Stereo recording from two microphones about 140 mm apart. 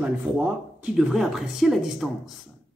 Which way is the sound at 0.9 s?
Centre (ahead or behind).